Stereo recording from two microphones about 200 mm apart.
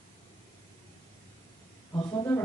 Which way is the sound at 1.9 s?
20° left (ahead or behind).